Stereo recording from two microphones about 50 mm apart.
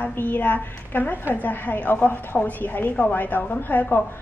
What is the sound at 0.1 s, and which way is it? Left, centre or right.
A woman's voice, left.